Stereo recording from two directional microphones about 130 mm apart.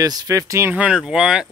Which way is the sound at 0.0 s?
30° right (ahead or behind).